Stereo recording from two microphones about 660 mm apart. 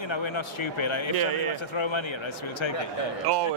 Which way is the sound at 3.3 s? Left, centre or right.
Right.